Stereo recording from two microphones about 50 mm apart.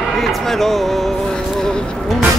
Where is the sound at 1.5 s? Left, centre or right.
Centre.